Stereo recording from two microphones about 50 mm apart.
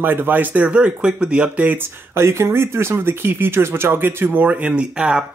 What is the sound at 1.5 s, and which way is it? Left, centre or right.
Speech, right.